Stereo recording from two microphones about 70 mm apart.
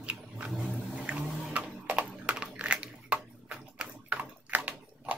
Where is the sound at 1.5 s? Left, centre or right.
Centre.